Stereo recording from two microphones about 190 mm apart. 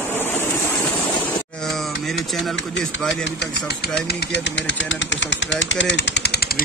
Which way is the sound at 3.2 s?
65° left (ahead or behind).